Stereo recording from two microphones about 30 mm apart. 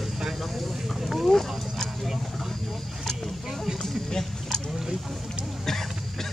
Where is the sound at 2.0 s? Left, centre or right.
Centre.